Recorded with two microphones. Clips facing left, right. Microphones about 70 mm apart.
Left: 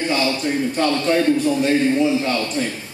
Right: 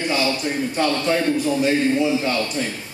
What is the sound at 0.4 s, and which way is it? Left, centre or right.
A man's voice, centre.